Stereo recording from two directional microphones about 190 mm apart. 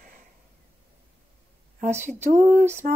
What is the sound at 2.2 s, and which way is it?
Speech, 40° right (ahead or behind).